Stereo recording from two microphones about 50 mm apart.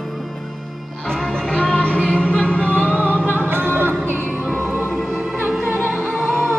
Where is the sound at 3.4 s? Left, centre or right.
Right.